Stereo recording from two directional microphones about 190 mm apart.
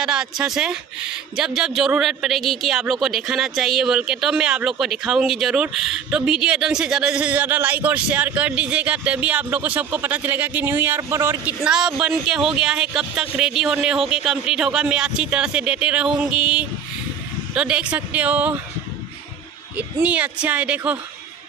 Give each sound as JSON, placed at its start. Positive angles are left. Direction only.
{"t": 0.0, "sound": "speech", "side_deg": -5}
{"t": 19.8, "sound": "speech", "side_deg": -10}